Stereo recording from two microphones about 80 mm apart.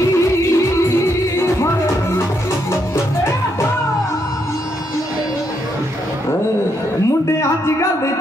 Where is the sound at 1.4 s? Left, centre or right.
Left.